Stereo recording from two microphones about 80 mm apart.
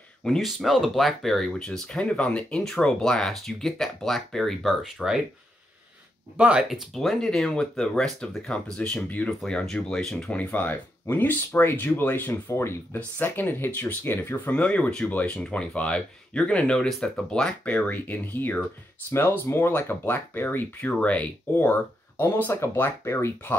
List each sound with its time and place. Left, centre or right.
0.2 s speech: centre
6.3 s speech: centre
6.7 s speech: centre
10.3 s speech: left